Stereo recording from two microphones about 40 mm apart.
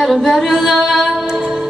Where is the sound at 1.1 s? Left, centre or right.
Centre.